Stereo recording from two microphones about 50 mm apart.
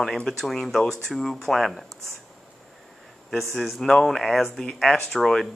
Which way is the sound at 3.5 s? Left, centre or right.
Centre.